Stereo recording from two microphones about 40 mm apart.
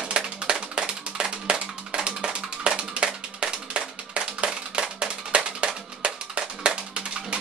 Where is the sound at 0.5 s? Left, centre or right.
Right.